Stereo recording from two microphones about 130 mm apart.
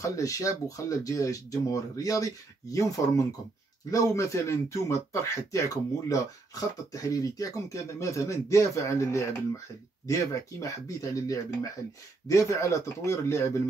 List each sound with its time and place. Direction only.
0.0 s speech: 25° left (ahead or behind)